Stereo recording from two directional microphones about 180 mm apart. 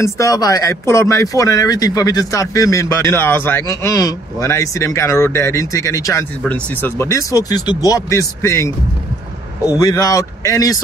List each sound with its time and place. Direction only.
0.0 s a man's voice: 15° left (ahead or behind)